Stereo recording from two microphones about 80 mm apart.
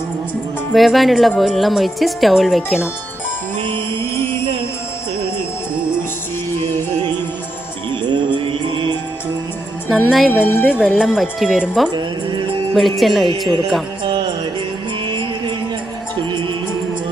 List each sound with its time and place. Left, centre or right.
0.7 s a woman's voice: centre
7.9 s music: right
9.8 s a woman's voice: centre
12.7 s a woman's voice: centre
15.0 s music: right